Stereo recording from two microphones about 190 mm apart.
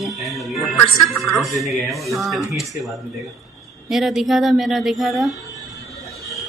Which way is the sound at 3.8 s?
Centre (ahead or behind).